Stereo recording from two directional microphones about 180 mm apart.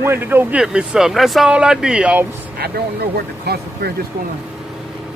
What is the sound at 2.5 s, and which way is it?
Speech, 60° right (ahead or behind).